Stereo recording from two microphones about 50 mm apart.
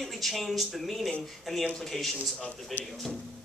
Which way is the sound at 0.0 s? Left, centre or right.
Centre.